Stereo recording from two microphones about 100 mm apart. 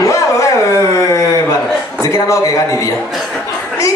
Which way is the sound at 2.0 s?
35° left (ahead or behind).